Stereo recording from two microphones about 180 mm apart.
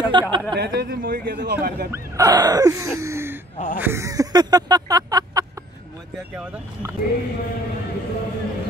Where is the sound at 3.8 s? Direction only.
15° right (ahead or behind).